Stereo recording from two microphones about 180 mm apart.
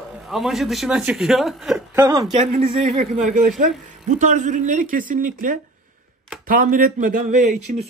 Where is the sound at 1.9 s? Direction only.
15° right (ahead or behind).